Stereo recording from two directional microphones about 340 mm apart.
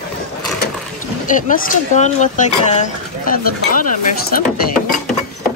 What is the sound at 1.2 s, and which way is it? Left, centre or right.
Speech, left.